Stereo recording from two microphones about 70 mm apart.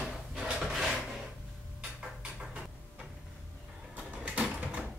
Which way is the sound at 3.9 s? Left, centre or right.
Centre.